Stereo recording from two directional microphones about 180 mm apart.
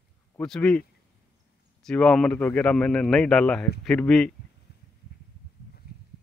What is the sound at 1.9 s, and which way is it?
Speech, 5° left (ahead or behind).